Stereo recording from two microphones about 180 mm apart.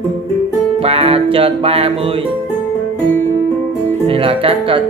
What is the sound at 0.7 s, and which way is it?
Music, 35° right (ahead or behind).